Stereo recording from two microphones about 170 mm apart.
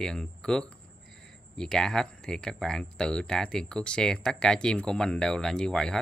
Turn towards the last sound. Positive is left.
turn(degrees=5)  # may be behind; listen again after turning